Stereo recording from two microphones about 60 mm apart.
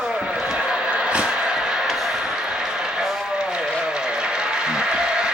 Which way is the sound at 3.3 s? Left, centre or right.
Centre.